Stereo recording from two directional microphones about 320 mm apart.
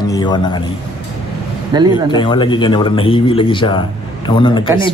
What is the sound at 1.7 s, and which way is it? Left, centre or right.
Speech, centre.